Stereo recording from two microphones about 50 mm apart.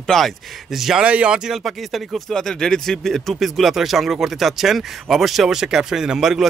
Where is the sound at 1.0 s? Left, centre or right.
Right.